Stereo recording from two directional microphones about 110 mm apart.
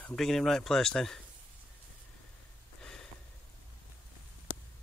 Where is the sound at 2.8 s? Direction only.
5° left (ahead or behind).